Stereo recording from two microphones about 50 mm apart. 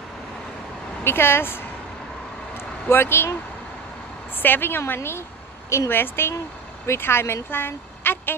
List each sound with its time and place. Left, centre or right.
1.0 s a woman's voice: left
2.5 s vehicle: left
4.4 s a woman's voice: left